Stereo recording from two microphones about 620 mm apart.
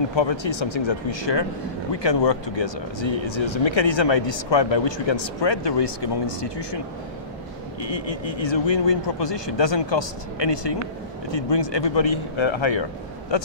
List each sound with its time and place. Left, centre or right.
0.1 s speech: left
7.8 s speech: left